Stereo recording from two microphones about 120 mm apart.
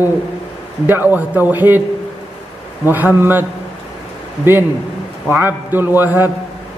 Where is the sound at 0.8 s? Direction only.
15° right (ahead or behind).